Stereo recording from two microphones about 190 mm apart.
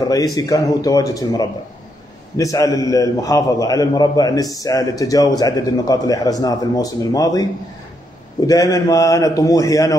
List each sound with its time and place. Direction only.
0.1 s a man's voice: 20° left (ahead or behind)
8.5 s a man's voice: 20° left (ahead or behind)